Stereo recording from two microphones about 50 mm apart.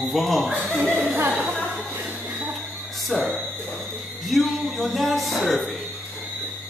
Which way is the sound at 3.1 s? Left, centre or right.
Left.